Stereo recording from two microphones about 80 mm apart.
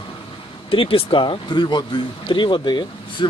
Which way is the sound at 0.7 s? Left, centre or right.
Left.